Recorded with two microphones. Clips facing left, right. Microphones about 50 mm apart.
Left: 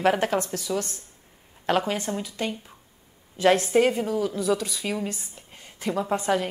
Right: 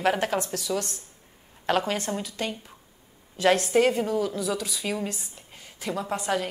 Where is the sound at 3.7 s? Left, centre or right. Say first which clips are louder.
Left 1 dB; centre.